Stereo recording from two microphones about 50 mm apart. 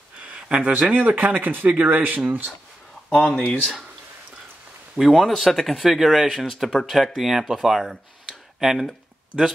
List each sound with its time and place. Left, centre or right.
0.3 s a sound: right
0.9 s speech: right
3.2 s speech: centre
4.9 s speech: centre